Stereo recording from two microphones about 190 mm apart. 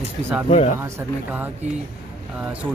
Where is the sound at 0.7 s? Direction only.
10° right (ahead or behind).